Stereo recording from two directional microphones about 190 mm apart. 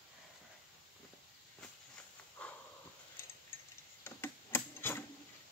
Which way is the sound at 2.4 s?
5° left (ahead or behind).